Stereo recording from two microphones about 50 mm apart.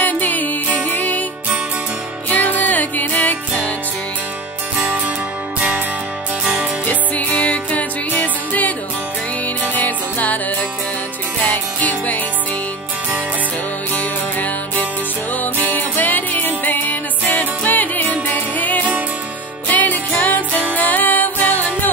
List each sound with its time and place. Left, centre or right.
0.0 s music: left
2.2 s music: left
6.9 s music: left
9.8 s music: left
11.4 s music: left
13.9 s music: left